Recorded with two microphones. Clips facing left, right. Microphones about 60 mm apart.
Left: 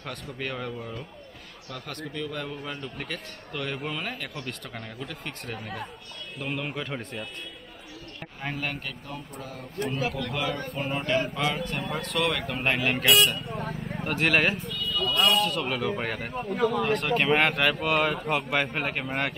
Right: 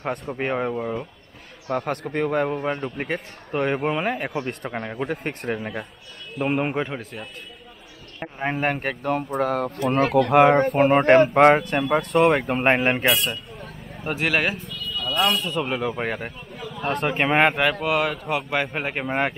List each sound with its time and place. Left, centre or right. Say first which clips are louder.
0.4 s a man's voice: right 8 dB; right
6.3 s a man's voice: right 10 dB; right
7.0 s a man's voice: right 1 dB; centre
8.2 s speech: right 9 dB; right
8.5 s speech: right 9 dB; right
14.0 s a sound: right 1 dB; centre
15.4 s speech: right 3 dB; centre
16.3 s speech: left 10 dB; left
17.0 s speech: right 7 dB; right
17.8 s speech: right 2 dB; centre